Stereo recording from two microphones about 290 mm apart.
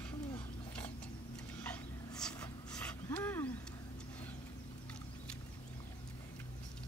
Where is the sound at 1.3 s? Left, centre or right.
Centre.